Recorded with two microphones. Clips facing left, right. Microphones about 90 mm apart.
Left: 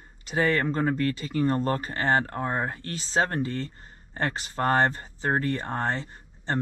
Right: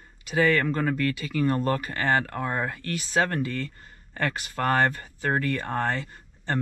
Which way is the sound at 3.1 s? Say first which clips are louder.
Even; 25° left (ahead or behind).